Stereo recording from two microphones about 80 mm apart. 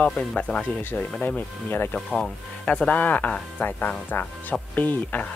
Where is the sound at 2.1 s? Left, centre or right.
Centre.